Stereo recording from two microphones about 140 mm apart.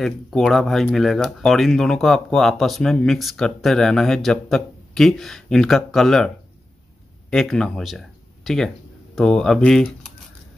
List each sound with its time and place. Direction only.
0.0 s speech: centre (ahead or behind)